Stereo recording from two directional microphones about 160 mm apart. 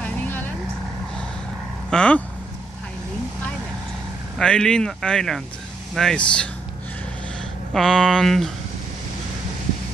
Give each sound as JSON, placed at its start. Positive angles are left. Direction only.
{"t": 0.0, "sound": "vehicle", "side_deg": 10}
{"t": 1.9, "sound": "speech", "side_deg": 5}
{"t": 4.4, "sound": "speech", "side_deg": 5}
{"t": 7.7, "sound": "speech", "side_deg": 5}